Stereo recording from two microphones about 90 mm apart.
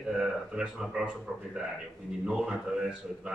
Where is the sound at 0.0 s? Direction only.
5° right (ahead or behind).